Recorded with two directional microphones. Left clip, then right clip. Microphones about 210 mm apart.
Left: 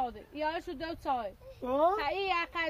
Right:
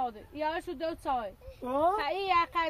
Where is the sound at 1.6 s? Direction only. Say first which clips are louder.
Even; 15° left (ahead or behind).